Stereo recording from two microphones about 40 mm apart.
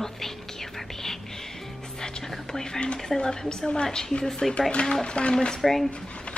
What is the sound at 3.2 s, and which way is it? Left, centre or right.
Speech, centre.